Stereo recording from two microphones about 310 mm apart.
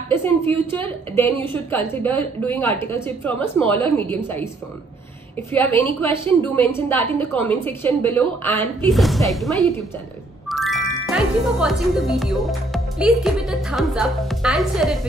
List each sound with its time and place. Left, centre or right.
0.7 s a woman's voice: centre
5.5 s a woman's voice: centre
6.0 s a woman's voice: centre
6.4 s a woman's voice: centre